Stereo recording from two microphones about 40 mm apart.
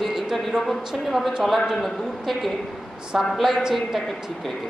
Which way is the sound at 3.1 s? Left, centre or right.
Centre.